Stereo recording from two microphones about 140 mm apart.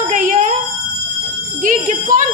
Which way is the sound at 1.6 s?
70° right (ahead or behind).